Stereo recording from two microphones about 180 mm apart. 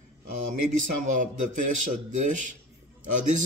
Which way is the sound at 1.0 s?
45° right (ahead or behind).